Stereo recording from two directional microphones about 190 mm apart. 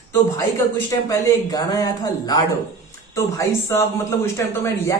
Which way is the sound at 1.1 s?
20° left (ahead or behind).